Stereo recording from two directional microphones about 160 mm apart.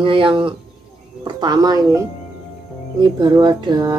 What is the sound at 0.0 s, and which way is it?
A woman's voice, 30° right (ahead or behind).